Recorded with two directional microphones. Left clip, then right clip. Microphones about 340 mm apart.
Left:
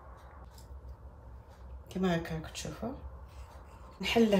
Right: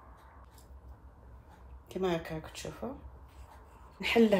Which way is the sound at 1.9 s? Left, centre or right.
Centre.